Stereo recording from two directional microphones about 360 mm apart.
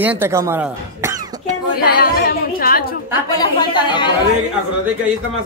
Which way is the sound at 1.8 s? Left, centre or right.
Left.